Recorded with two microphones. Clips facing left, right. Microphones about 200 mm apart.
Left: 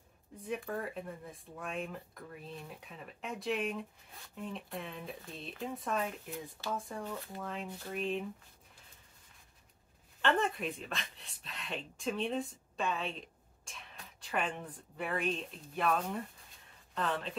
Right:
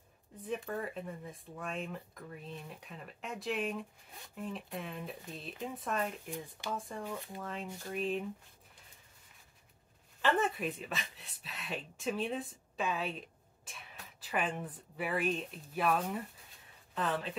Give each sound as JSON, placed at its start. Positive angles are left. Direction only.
{"t": 0.4, "sound": "speech", "side_deg": 0}
{"t": 10.2, "sound": "speech", "side_deg": -5}